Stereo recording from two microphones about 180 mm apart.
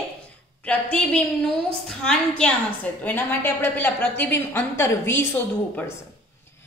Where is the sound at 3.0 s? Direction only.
10° left (ahead or behind).